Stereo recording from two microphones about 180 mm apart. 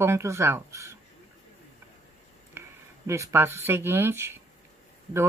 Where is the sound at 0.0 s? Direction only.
15° right (ahead or behind).